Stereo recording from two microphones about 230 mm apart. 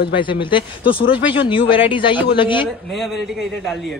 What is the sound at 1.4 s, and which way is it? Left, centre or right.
Speech, left.